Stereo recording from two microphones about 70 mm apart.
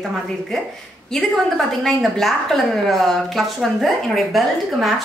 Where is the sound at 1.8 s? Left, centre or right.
Centre.